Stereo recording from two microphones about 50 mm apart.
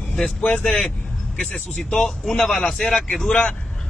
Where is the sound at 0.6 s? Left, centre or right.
Centre.